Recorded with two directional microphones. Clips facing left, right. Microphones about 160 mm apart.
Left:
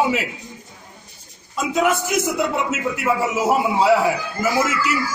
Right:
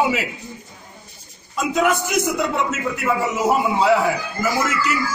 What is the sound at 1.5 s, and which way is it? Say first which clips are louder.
Speech: even; 5° left (ahead or behind).